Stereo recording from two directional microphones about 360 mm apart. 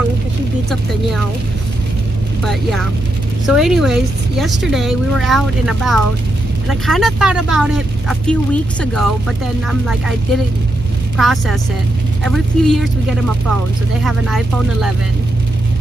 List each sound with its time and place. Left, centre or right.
3.4 s speech: centre
9.7 s speech: centre
14.0 s speech: centre